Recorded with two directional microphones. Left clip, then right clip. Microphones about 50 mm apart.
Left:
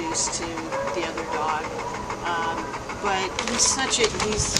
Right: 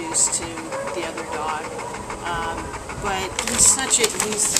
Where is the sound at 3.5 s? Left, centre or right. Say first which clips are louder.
Right 3 dB; centre.